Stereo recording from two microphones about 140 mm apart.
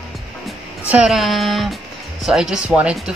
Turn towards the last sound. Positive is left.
turn(degrees=-5)  # may be behind; listen again after turning